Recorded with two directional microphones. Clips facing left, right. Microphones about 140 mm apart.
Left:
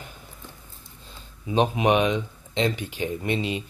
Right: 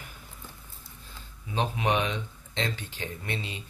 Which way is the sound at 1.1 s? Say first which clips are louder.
Left 9 dB; 20° left (ahead or behind).